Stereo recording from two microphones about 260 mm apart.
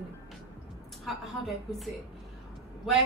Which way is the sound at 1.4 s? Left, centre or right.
Centre.